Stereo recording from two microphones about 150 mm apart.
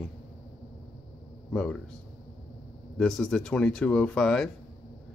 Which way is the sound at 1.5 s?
5° left (ahead or behind).